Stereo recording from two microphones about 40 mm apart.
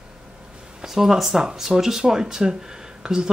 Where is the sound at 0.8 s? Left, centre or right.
Centre.